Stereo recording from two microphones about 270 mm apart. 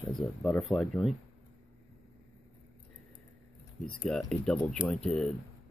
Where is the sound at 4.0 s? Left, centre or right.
Centre.